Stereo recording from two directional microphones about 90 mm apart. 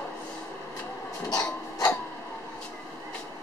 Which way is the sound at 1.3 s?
45° left (ahead or behind).